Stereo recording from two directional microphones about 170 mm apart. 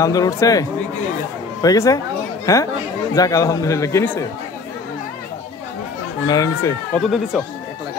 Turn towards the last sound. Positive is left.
turn(degrees=5)  # may be behind; listen again after turning